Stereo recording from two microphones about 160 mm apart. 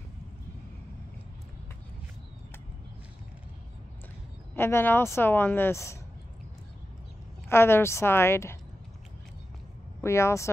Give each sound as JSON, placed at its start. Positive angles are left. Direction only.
{"t": 4.6, "sound": "a woman's voice", "side_deg": 15}
{"t": 7.4, "sound": "a woman's voice", "side_deg": 15}
{"t": 10.0, "sound": "a woman's voice", "side_deg": 15}